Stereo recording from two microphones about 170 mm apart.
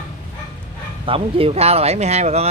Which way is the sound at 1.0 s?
30° right (ahead or behind).